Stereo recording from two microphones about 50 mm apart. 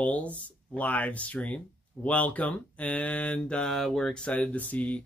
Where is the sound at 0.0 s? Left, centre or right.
Left.